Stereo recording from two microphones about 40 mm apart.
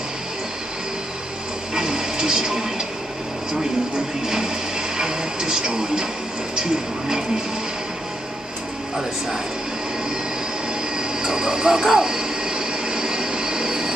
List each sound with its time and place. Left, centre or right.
1.8 s television: centre
4.9 s speech: centre
11.0 s train: centre